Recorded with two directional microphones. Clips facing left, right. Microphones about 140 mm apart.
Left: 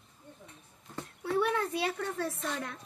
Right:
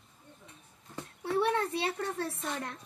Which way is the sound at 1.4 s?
30° right (ahead or behind).